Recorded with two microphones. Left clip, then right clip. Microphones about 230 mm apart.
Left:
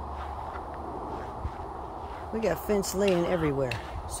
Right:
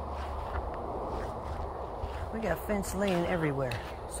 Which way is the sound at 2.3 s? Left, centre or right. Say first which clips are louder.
Left 5 dB; left.